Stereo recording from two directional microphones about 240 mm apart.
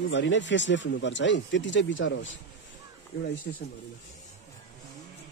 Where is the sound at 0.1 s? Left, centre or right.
Left.